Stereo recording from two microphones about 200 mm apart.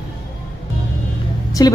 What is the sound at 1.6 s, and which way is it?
Speech, 20° left (ahead or behind).